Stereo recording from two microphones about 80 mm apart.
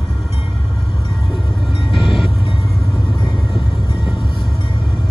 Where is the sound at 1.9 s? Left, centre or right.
Left.